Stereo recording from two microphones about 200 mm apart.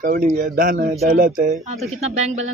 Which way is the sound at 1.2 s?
45° right (ahead or behind).